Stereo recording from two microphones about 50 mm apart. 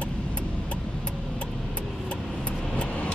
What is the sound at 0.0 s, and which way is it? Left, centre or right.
Vehicle, left.